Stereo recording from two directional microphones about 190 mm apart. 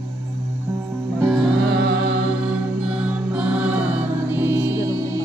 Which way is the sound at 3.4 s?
5° right (ahead or behind).